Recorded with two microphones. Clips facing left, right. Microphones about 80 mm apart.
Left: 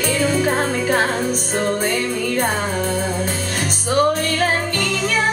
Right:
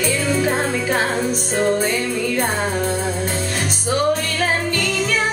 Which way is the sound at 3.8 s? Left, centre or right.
Left.